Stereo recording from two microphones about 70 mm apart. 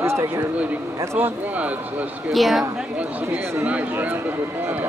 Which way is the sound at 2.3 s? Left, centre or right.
Centre.